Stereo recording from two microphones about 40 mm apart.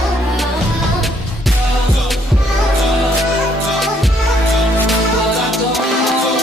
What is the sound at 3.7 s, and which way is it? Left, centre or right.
Music, centre.